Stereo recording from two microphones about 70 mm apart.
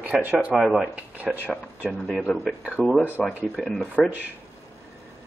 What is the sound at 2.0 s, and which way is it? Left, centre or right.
Speech, centre.